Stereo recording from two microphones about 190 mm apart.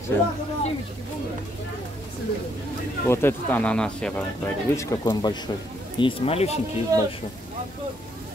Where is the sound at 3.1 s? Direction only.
10° left (ahead or behind); by 6.5 s 30° left (ahead or behind).